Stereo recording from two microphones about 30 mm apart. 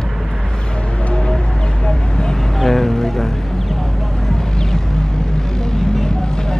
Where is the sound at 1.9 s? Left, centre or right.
Left.